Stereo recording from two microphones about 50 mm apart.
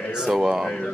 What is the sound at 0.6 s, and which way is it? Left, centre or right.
Speech, centre.